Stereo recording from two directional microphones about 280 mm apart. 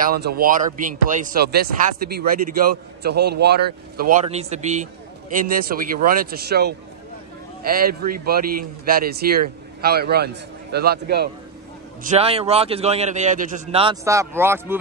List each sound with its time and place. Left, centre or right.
0.0 s speech: right
12.0 s a man's voice: right; by 14.8 s centre